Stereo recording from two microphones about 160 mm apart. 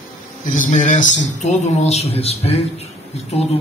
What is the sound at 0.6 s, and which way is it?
Speech, 50° left (ahead or behind).